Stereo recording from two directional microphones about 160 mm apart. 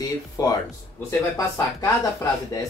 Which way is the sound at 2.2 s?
20° left (ahead or behind).